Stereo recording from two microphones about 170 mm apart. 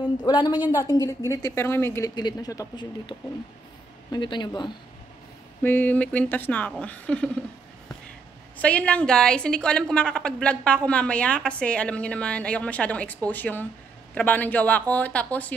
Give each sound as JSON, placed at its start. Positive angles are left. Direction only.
{"t": 0.3, "sound": "speech", "side_deg": 25}
{"t": 5.6, "sound": "a woman's voice", "side_deg": 10}
{"t": 8.5, "sound": "a woman's voice", "side_deg": 10}